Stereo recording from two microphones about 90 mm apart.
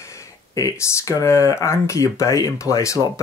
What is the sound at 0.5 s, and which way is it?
Speech, 35° left (ahead or behind).